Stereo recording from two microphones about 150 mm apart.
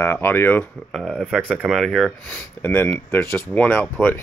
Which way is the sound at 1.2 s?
10° right (ahead or behind).